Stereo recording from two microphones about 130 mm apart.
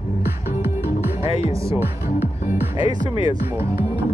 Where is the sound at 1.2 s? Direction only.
50° left (ahead or behind).